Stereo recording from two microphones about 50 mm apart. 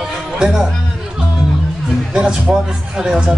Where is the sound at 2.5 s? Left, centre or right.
Centre.